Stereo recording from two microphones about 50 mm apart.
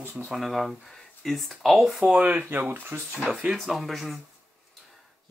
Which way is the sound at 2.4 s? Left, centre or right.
Right.